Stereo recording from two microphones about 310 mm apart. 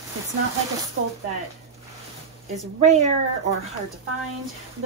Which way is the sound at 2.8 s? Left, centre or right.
Right.